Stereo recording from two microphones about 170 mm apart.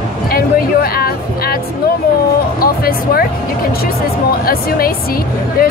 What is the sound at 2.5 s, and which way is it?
Speech, 60° left (ahead or behind).